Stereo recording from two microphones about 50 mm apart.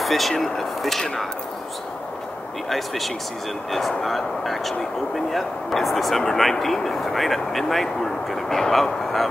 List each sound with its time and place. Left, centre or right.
0.0 s speech: centre
2.7 s speech: centre